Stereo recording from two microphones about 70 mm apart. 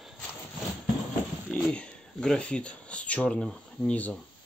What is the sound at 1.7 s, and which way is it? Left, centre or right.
Speech, centre.